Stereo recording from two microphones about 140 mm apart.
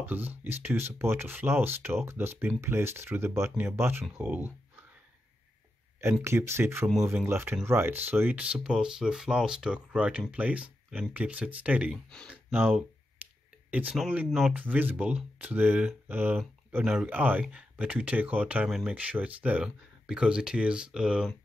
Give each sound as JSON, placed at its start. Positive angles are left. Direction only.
{"t": 0.0, "sound": "speech", "side_deg": -15}
{"t": 6.2, "sound": "speech", "side_deg": -20}
{"t": 13.2, "sound": "a sound", "side_deg": -10}
{"t": 13.7, "sound": "speech", "side_deg": -10}